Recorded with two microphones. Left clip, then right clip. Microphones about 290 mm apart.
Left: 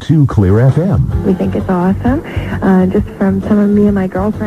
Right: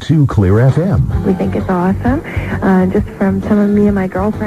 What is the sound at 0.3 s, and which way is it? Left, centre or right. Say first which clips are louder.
Speech: even; left.